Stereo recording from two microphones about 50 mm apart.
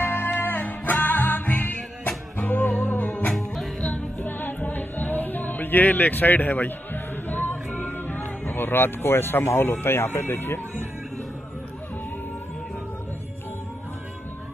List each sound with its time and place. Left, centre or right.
0.0 s music: left
3.3 s music: centre
3.9 s music: left
9.6 s speech: left